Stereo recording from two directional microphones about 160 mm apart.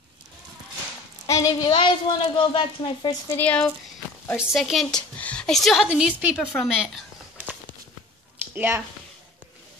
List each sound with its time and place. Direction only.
1.2 s speech: 20° left (ahead or behind)
3.3 s a woman's voice: 5° left (ahead or behind)
8.5 s speech: 15° right (ahead or behind)